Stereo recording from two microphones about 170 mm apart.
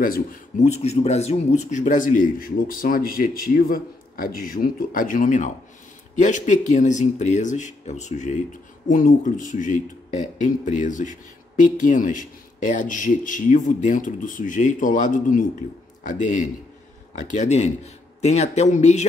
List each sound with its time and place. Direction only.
0.0 s speech: 55° left (ahead or behind)
0.7 s a man's voice: 40° left (ahead or behind)